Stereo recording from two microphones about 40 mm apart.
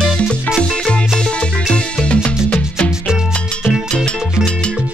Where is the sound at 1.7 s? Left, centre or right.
Left.